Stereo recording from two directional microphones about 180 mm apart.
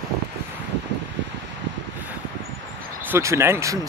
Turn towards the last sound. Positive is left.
turn(degrees=-15)  # may be behind; listen again after turning